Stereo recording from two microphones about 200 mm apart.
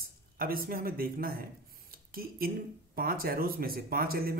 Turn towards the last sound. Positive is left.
turn(degrees=-50)  # may be behind; listen again after turning